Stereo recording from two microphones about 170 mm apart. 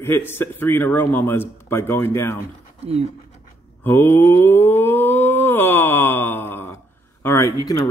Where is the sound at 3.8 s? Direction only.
10° left (ahead or behind).